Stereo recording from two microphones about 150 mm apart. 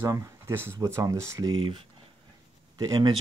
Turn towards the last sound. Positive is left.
turn(degrees=-25)  # may be behind; listen again after turning